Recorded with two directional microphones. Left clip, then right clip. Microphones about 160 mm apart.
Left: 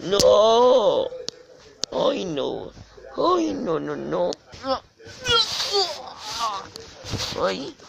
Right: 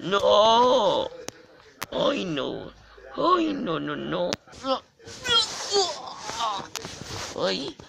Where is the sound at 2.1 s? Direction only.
10° left (ahead or behind).